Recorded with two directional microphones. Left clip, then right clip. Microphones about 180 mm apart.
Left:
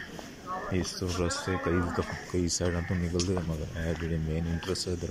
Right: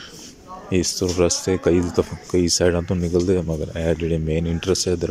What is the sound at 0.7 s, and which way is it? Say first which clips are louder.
Speech: right 17 dB; 65° right (ahead or behind).